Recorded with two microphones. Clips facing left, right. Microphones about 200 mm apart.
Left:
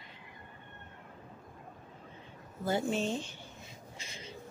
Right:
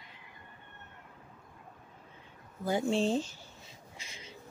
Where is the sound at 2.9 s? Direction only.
35° right (ahead or behind).